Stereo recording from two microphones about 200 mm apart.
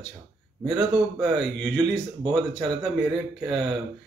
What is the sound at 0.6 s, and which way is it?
Speech, 20° right (ahead or behind).